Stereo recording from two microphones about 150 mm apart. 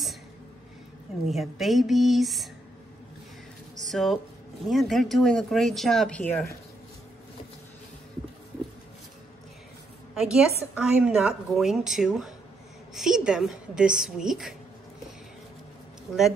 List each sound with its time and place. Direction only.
1.2 s a woman's voice: centre (ahead or behind)
3.9 s a woman's voice: centre (ahead or behind)
10.1 s a woman's voice: 5° right (ahead or behind)